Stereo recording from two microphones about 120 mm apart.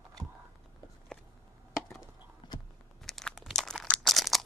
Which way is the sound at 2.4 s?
35° left (ahead or behind).